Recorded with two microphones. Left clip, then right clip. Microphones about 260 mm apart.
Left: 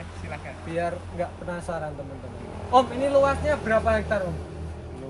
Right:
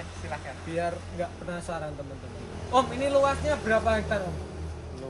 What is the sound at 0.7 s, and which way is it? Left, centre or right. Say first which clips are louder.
A man's voice: left 2 dB; centre.